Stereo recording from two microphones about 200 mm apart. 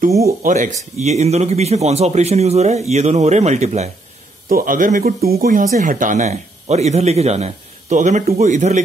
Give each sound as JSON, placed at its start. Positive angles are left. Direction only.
{"t": 0.4, "sound": "speech", "side_deg": -40}
{"t": 4.5, "sound": "speech", "side_deg": -45}